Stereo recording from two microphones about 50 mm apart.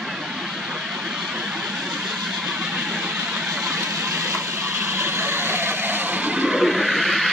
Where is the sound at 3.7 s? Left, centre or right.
Right.